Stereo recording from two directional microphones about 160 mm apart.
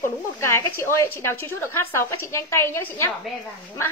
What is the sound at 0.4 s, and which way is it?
Speech, 15° left (ahead or behind).